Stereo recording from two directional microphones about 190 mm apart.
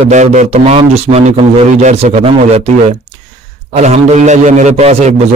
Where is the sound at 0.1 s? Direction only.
40° right (ahead or behind).